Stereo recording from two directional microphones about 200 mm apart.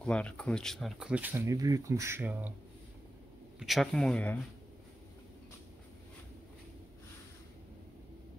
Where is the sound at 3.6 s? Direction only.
Centre (ahead or behind).